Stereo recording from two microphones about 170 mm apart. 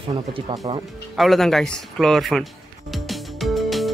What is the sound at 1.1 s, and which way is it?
Speech, centre (ahead or behind).